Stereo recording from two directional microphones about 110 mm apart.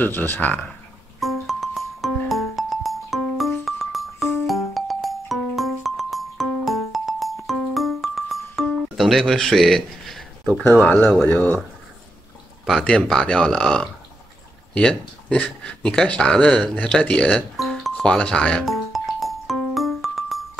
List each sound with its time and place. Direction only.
0.0 s speech: 15° left (ahead or behind)
1.2 s music: centre (ahead or behind)
10.6 s speech: 15° left (ahead or behind)
12.8 s speech: 10° left (ahead or behind)
14.7 s a sound: 10° left (ahead or behind)